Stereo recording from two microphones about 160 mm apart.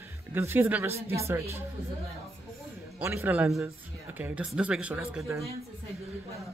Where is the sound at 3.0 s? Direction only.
15° right (ahead or behind).